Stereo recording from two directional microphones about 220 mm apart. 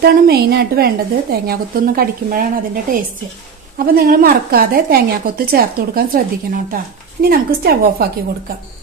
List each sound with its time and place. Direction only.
0.0 s a woman's voice: 45° right (ahead or behind)